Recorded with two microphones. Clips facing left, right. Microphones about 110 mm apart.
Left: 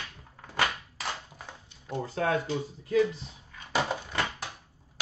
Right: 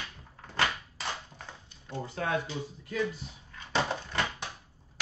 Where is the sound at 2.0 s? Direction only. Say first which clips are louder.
Left 4 dB; 40° left (ahead or behind).